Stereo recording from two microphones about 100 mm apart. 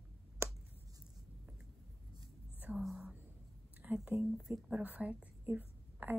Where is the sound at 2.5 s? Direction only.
15° right (ahead or behind).